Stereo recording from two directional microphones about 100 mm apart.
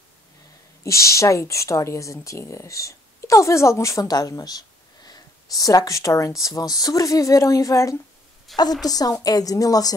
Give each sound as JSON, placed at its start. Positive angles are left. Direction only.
{"t": 0.8, "sound": "speech", "side_deg": 30}
{"t": 8.5, "sound": "a woman's voice", "side_deg": 0}
{"t": 8.8, "sound": "speech", "side_deg": 40}